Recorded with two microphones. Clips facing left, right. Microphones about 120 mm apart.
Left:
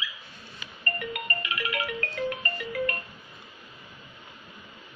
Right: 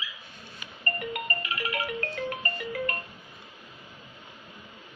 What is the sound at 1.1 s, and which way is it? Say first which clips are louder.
Music: even; 35° right (ahead or behind).